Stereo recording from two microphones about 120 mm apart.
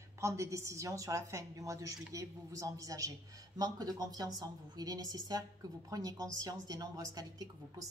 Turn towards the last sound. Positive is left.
turn(degrees=-30)  # may be behind; listen again after turning